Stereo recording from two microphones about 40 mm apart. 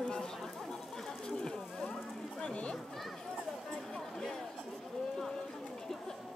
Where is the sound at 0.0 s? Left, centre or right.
Centre.